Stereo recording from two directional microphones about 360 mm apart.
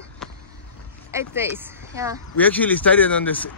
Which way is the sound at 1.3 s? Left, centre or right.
Centre.